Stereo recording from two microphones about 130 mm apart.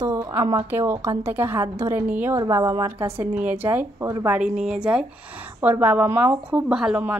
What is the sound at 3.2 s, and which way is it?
A woman's voice, 15° right (ahead or behind).